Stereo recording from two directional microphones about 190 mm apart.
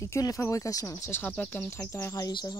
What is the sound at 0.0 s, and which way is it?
Speech, 15° left (ahead or behind).